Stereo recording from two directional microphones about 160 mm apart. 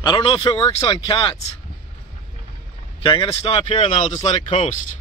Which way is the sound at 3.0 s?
30° left (ahead or behind).